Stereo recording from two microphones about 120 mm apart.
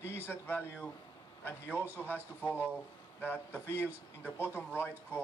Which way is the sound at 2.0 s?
15° left (ahead or behind).